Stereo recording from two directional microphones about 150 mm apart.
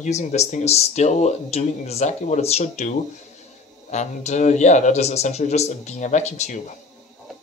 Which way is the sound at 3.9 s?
50° left (ahead or behind).